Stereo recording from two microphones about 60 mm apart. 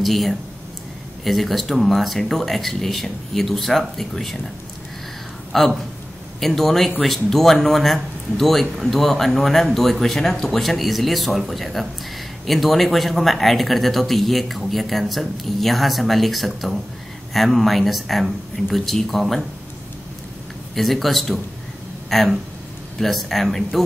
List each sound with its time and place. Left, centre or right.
0.0 s speech: centre
5.5 s speech: centre
20.7 s speech: centre